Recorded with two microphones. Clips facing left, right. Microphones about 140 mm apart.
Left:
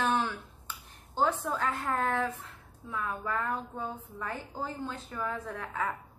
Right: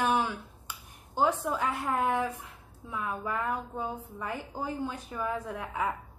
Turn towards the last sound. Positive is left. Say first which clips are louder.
# right 2 dB
turn(degrees=-10)  # may be behind; listen again after turning